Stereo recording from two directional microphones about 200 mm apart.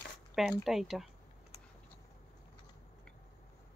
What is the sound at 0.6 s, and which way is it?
Speech, centre (ahead or behind).